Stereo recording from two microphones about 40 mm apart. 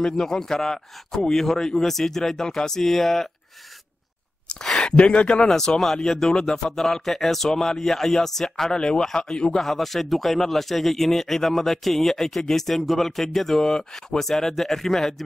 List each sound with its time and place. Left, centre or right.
0.0 s a man's voice: centre
4.9 s speech: left
5.5 s a man's voice: centre